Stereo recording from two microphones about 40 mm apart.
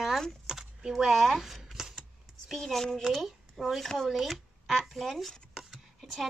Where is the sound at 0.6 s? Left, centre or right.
Centre.